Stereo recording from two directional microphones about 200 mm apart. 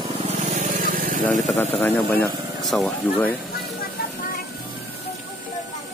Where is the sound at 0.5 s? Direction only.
45° right (ahead or behind).